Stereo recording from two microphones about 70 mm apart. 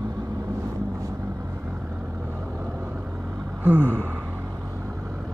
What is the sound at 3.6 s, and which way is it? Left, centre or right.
Gasp, right.